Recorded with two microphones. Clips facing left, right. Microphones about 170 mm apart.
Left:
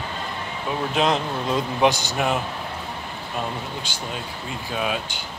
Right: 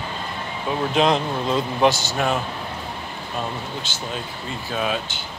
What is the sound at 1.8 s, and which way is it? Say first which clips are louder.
Speech: right 1 dB; 15° left (ahead or behind).